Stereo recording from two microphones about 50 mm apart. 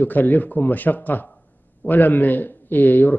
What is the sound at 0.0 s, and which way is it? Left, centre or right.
Speech, left.